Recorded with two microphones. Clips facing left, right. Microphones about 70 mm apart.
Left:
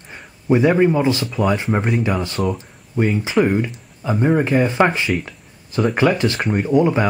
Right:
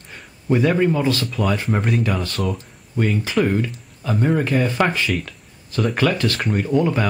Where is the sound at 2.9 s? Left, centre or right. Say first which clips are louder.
Left 3 dB; centre.